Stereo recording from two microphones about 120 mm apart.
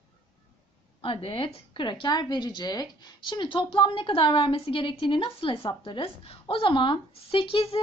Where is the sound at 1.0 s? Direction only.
50° left (ahead or behind).